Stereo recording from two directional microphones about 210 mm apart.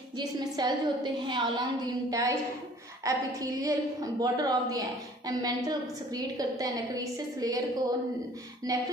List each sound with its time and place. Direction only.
0.2 s a woman's voice: 20° right (ahead or behind)
8.7 s a woman's voice: 15° right (ahead or behind)